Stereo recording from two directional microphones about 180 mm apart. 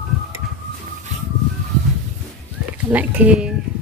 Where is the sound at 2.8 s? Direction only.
10° right (ahead or behind).